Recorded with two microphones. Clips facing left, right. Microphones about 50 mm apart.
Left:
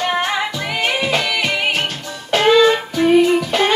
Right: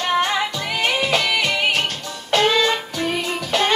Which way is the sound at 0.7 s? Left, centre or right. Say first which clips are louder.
Left 1 dB; centre.